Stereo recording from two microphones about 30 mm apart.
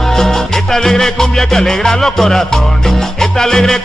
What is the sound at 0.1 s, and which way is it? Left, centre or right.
Music, centre.